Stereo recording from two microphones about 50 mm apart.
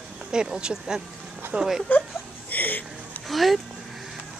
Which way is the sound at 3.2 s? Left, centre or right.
Centre.